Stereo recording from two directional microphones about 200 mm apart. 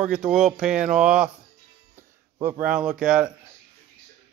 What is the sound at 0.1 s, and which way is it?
Speech, centre (ahead or behind).